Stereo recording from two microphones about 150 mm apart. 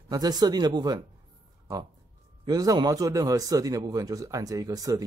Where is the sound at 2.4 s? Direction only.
25° right (ahead or behind).